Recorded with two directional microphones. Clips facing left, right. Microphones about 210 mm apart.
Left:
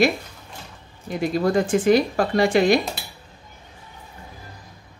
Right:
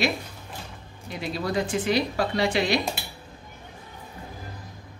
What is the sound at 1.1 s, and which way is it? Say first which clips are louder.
Speech: left 8 dB; 45° left (ahead or behind).